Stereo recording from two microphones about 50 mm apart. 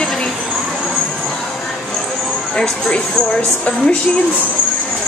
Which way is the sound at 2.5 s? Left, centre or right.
Centre.